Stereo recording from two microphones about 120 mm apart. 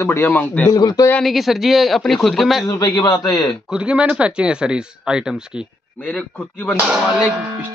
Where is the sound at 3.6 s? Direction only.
10° right (ahead or behind).